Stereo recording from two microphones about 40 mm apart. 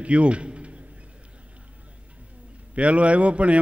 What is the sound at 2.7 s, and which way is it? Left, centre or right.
Speech, right.